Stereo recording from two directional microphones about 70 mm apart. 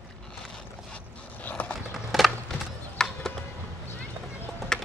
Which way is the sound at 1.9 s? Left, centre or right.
Centre.